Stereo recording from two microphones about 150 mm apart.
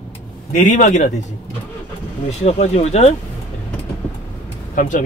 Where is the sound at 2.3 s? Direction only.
45° left (ahead or behind).